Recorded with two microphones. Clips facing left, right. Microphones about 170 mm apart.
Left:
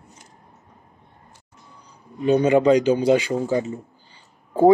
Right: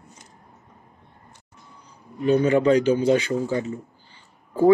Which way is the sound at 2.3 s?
20° left (ahead or behind).